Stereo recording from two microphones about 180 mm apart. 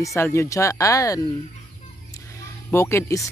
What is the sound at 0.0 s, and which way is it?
Speech, 15° left (ahead or behind).